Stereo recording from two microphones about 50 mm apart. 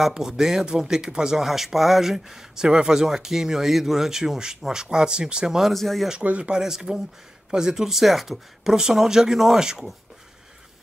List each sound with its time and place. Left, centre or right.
0.0 s speech: centre
5.6 s speech: centre
6.2 s speech: right
6.5 s speech: centre